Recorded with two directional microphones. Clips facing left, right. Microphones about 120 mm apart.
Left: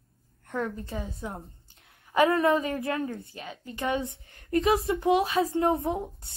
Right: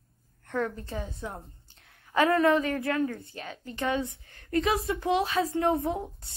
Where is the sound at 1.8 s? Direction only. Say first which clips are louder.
Left 1 dB; 20° left (ahead or behind).